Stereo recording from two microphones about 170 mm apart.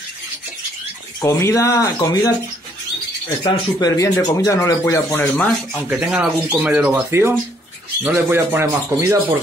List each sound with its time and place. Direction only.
1.2 s speech: 15° left (ahead or behind)
3.4 s speech: 20° left (ahead or behind)
5.9 s speech: 5° right (ahead or behind)